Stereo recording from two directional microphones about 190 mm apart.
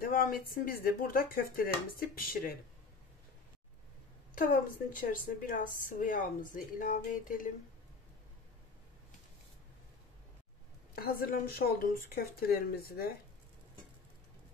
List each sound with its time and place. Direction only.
0.0 s a woman's voice: 50° left (ahead or behind)
4.4 s a woman's voice: 50° left (ahead or behind)
11.0 s a woman's voice: 50° left (ahead or behind)